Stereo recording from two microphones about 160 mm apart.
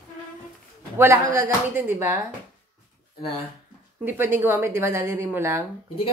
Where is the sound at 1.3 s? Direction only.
15° right (ahead or behind).